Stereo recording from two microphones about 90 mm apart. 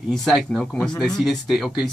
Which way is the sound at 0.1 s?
5° left (ahead or behind).